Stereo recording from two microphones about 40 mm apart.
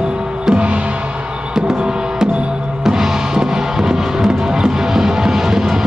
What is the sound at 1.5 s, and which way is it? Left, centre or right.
Music, centre.